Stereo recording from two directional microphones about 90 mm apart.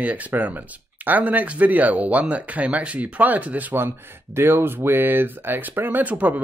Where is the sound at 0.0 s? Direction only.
15° right (ahead or behind).